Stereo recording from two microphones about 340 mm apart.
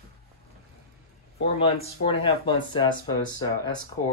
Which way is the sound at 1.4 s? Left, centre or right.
Centre.